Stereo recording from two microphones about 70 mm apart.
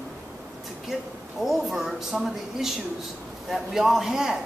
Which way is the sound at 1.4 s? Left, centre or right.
Centre.